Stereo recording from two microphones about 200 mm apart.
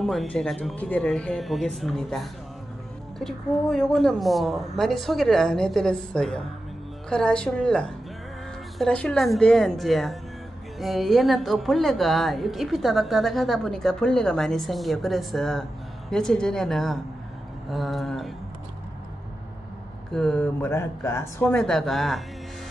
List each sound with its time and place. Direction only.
0.0 s a woman's voice: centre (ahead or behind)
20.1 s a woman's voice: 5° left (ahead or behind)